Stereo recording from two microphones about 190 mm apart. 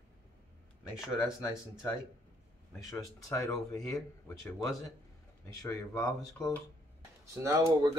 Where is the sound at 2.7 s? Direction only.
10° left (ahead or behind).